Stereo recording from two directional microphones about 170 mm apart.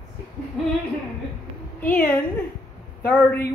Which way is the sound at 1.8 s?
10° left (ahead or behind).